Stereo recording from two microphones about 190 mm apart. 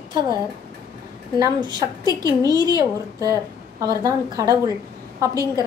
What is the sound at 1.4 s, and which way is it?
A woman's voice, 25° right (ahead or behind).